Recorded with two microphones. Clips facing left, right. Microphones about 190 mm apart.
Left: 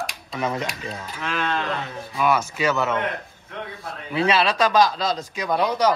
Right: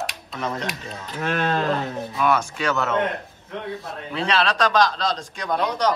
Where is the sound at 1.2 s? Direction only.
40° right (ahead or behind).